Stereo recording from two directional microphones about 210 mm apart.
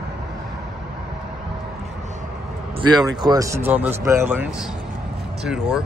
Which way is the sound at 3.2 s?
15° right (ahead or behind).